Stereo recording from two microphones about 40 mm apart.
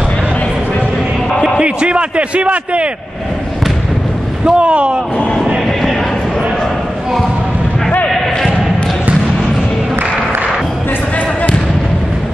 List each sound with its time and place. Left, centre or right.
1.6 s a man's voice: right
4.5 s a man's voice: right